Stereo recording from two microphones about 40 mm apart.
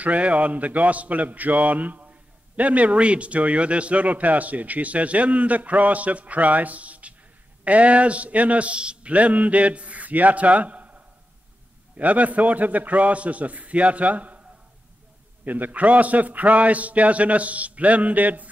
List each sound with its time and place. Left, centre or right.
0.0 s a man's voice: right
9.1 s a man's voice: right
15.4 s a man's voice: right